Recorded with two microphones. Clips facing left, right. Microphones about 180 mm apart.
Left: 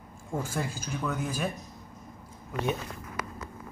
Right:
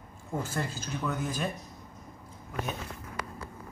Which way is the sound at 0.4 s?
10° left (ahead or behind).